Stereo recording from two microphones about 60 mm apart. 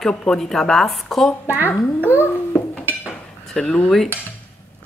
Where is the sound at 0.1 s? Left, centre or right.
Centre.